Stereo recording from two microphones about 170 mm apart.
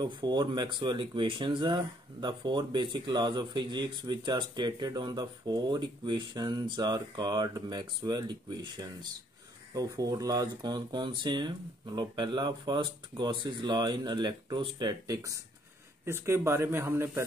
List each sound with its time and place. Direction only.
0.0 s speech: 25° right (ahead or behind)